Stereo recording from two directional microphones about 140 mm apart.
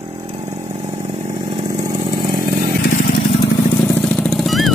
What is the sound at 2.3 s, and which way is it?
Motorcycle, 75° right (ahead or behind).